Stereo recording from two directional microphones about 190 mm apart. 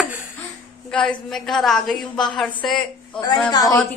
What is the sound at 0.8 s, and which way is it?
A woman's voice, 5° left (ahead or behind).